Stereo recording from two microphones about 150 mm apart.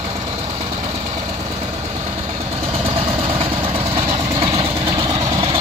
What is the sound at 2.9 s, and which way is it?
Vehicle, 40° right (ahead or behind).